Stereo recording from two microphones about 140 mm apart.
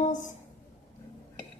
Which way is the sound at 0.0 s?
60° left (ahead or behind).